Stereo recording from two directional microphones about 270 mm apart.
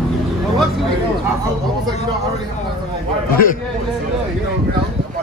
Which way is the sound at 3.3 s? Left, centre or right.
Left.